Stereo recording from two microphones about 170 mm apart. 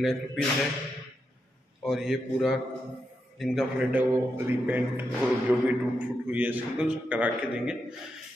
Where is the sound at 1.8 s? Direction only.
Centre (ahead or behind).